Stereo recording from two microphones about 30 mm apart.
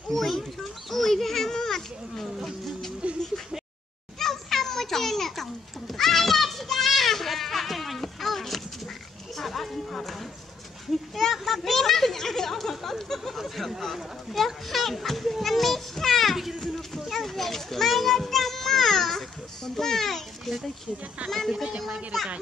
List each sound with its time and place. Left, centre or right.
0.1 s speech: centre
2.2 s insect: centre
3.0 s a sound: right
4.2 s children playing: centre
9.4 s music: centre
11.3 s a sound: centre
14.3 s children playing: centre
16.3 s run: centre
16.6 s run: centre
17.1 s children playing: centre
19.8 s a sound: centre
21.2 s speech: right